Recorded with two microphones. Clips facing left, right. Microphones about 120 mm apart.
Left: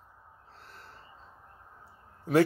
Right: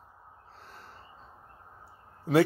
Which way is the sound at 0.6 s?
15° right (ahead or behind).